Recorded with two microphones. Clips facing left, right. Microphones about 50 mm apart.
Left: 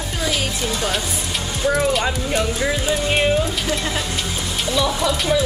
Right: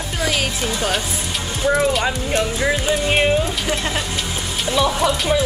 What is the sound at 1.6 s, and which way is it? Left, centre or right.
Speech, centre.